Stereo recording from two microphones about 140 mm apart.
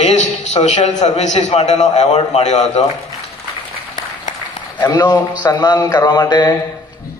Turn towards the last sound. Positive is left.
turn(degrees=30)  # may be behind; listen again after turning